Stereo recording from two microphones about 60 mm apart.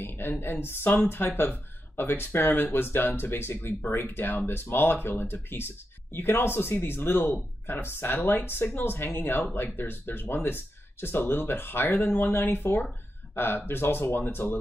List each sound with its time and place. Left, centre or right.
0.0 s speech: left